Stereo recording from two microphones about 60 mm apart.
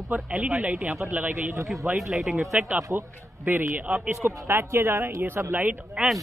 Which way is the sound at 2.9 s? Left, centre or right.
Right.